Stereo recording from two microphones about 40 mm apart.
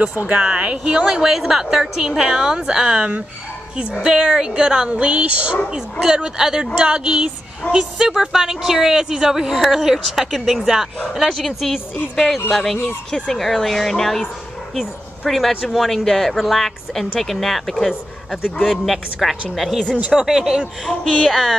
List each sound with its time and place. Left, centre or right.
0.4 s speech: right
1.2 s a woman's voice: centre
2.9 s speech: right
4.0 s speech: centre
5.7 s speech: centre
7.6 s a woman's voice: left
8.1 s a woman's voice: centre
15.2 s speech: centre
18.6 s a woman's voice: centre
20.1 s a woman's voice: centre
20.8 s speech: centre